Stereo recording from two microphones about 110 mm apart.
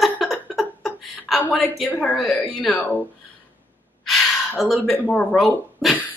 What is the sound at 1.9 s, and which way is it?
Speech, 15° left (ahead or behind).